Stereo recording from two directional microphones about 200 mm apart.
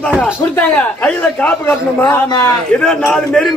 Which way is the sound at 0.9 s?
5° left (ahead or behind).